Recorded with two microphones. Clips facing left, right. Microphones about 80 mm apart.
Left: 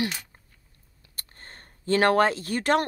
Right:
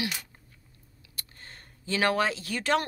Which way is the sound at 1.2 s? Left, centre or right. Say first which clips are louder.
Left 1 dB; left.